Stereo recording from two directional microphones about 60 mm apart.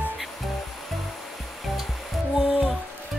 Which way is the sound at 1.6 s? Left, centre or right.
Centre.